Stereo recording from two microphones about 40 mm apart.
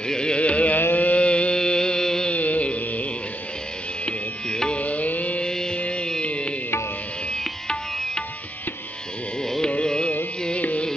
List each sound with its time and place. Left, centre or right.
0.1 s carnatic music: left
0.4 s carnatic music: left
0.9 s a sound: left
1.2 s a sound: left
2.3 s music: left
4.0 s music: left
4.7 s music: left
5.4 s music: centre
5.8 s music: left
7.6 s music: centre
9.4 s carnatic music: centre